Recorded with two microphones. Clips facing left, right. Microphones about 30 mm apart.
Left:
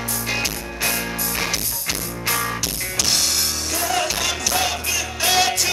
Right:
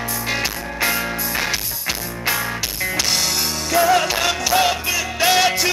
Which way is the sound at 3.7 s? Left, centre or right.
Centre.